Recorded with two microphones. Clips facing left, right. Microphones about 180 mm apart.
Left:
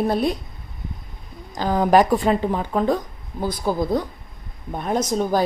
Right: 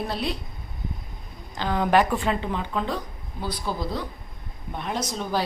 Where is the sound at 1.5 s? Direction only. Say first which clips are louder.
Left 5 dB; 40° left (ahead or behind).